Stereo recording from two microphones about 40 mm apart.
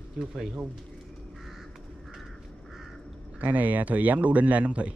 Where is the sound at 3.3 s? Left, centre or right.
Right.